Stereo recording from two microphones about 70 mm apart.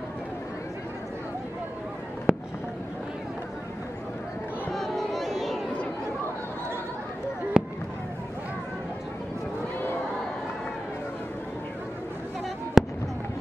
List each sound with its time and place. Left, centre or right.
2.3 s fireworks: right
4.7 s a sound: centre
7.5 s fireworks: centre
12.8 s fireworks: centre